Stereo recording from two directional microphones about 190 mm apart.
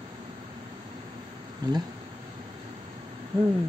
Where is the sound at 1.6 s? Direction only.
20° right (ahead or behind).